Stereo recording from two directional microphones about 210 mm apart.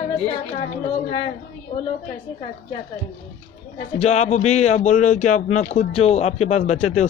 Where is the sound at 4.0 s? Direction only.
30° left (ahead or behind).